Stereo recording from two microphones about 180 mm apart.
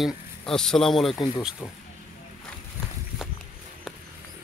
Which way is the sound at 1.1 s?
20° left (ahead or behind).